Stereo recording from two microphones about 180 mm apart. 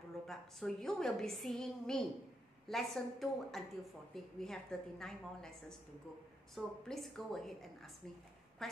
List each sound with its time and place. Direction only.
0.3 s a woman's voice: centre (ahead or behind)